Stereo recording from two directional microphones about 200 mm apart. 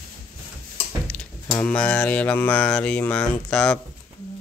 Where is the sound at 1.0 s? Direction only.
10° left (ahead or behind).